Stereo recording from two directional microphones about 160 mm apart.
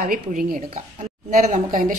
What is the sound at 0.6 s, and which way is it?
Speech, 45° right (ahead or behind).